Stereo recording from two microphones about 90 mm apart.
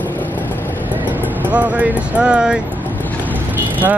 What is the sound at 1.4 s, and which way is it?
Speech, 20° right (ahead or behind).